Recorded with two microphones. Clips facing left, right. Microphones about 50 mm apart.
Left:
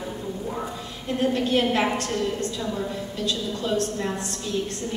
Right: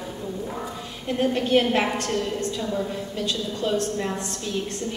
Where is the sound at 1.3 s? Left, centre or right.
Right.